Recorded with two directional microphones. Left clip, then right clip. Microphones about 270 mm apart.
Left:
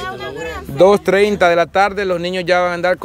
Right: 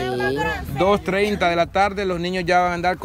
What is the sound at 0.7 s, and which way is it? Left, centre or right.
Speech, left.